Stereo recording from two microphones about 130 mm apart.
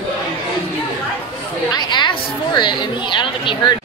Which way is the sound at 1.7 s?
35° left (ahead or behind).